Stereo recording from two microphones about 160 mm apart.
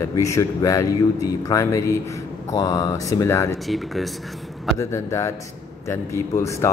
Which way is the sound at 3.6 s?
Centre (ahead or behind).